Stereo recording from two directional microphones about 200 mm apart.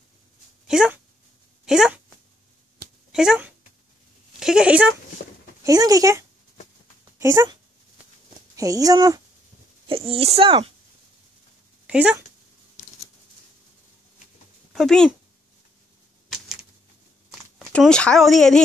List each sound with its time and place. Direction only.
0.7 s speech: 5° right (ahead or behind)
1.7 s a sound: centre (ahead or behind)
3.1 s speech: 5° right (ahead or behind)
5.6 s speech: 20° right (ahead or behind)
8.5 s speech: 15° right (ahead or behind)
10.1 s speech: 30° right (ahead or behind)
11.9 s speech: 5° right (ahead or behind)
14.7 s speech: centre (ahead or behind)
17.6 s speech: 5° left (ahead or behind)